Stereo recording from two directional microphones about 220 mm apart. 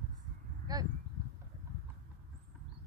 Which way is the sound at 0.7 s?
20° right (ahead or behind).